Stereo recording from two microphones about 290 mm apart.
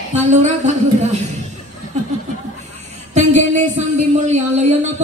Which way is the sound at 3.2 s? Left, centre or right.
Right.